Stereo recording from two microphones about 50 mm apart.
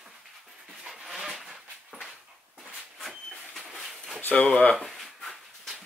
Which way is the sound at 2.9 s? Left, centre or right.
Centre.